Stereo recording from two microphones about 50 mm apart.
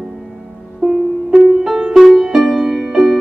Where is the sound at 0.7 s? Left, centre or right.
Centre.